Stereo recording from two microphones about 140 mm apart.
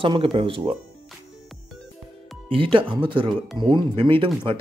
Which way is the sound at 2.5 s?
40° right (ahead or behind).